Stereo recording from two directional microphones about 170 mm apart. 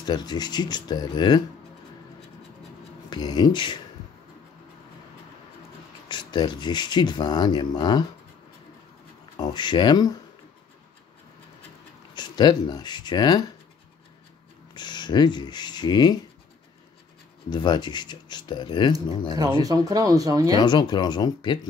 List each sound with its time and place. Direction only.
0.0 s speech: 25° left (ahead or behind)
3.1 s speech: 25° left (ahead or behind)
6.0 s speech: 25° left (ahead or behind)
9.4 s speech: 25° left (ahead or behind)
12.2 s speech: 25° left (ahead or behind)
14.7 s speech: 25° left (ahead or behind)
17.5 s speech: 25° left (ahead or behind)
19.6 s speech: 20° right (ahead or behind)
20.5 s speech: 25° left (ahead or behind)